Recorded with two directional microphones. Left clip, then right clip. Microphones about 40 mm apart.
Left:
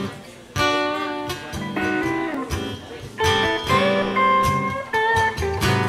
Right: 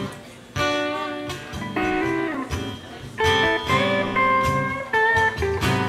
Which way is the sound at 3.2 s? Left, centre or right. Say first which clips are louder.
Even; centre.